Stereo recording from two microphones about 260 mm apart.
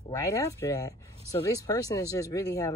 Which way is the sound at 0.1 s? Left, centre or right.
Centre.